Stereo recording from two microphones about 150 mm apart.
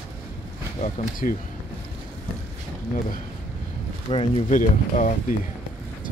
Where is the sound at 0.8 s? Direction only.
55° left (ahead or behind).